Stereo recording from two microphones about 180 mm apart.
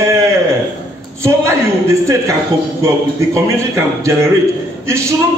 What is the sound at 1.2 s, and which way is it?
A man's voice, 15° right (ahead or behind).